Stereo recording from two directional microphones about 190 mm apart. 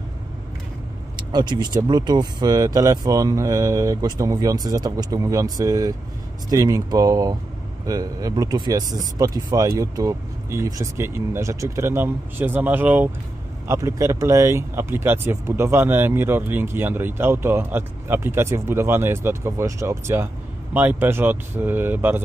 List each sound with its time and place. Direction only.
1.1 s speech: 25° right (ahead or behind)